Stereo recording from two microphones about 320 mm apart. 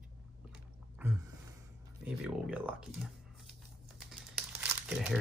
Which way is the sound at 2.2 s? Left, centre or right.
Centre.